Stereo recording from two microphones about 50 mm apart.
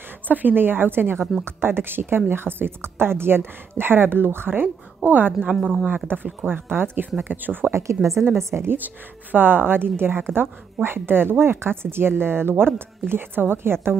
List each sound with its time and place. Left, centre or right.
0.3 s a woman's voice: right
5.6 s speech: centre
6.4 s a woman's voice: right
7.7 s a woman's voice: right
8.6 s a woman's voice: right